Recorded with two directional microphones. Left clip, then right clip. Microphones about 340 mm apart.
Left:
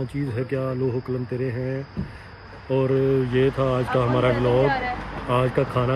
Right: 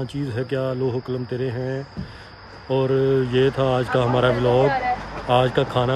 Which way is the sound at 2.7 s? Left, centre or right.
Right.